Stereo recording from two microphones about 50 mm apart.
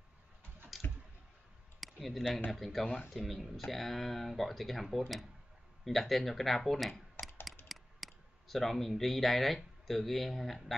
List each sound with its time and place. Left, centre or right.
0.7 s clicking: centre
1.8 s a sound: centre
2.5 s speech: centre